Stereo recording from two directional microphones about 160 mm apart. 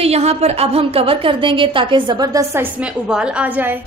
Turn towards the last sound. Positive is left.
turn(degrees=-10)  # may be behind; listen again after turning